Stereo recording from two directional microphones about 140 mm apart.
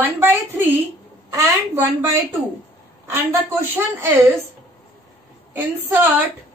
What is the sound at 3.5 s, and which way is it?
Speech, 15° right (ahead or behind).